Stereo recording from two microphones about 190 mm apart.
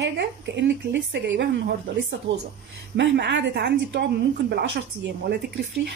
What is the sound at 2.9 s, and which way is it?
A woman's voice, 65° right (ahead or behind).